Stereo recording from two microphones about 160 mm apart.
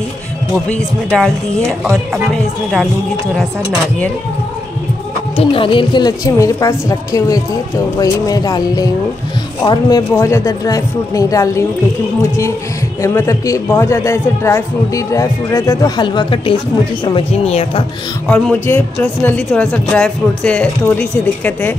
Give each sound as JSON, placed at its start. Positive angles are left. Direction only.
{"t": 0.7, "sound": "speech", "side_deg": 5}
{"t": 5.4, "sound": "a man's voice", "side_deg": 35}
{"t": 18.3, "sound": "speech", "side_deg": 10}